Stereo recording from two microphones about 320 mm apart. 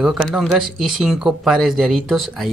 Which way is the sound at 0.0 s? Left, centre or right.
Centre.